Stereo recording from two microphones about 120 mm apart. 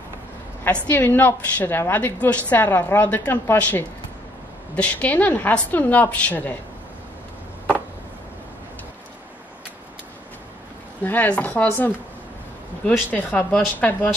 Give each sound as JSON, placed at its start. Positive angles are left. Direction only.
{"t": 0.8, "sound": "a woman's voice", "side_deg": 15}
{"t": 11.1, "sound": "a woman's voice", "side_deg": 10}